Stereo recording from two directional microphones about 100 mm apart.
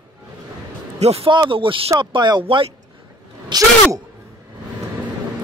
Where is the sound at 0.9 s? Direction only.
85° right.